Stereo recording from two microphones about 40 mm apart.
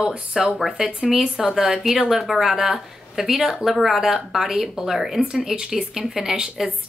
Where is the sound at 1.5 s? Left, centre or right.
Centre.